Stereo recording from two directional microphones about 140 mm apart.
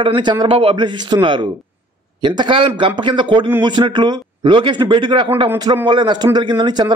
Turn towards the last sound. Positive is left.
turn(degrees=-30)  # may be behind; listen again after turning